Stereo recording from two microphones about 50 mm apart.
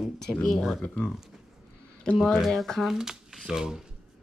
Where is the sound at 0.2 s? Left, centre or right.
Centre.